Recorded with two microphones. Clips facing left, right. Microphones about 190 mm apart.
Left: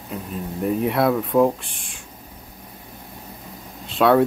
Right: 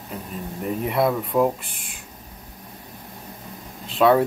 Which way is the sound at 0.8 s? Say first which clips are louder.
Even; centre (ahead or behind).